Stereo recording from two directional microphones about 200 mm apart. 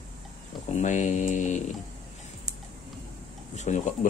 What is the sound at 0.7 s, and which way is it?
Speech, 35° left (ahead or behind).